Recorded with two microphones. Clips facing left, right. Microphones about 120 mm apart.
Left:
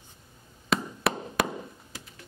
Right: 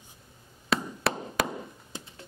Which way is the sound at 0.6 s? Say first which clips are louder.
Left 1 dB; centre (ahead or behind).